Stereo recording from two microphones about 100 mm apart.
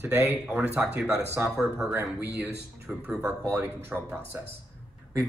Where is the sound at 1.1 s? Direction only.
30° right (ahead or behind).